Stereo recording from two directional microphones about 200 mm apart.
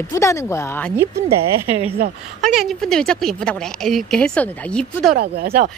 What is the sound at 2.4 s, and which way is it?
A woman's voice, centre (ahead or behind).